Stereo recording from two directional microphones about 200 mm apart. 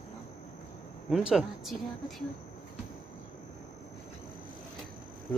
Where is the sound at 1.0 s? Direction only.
Centre (ahead or behind).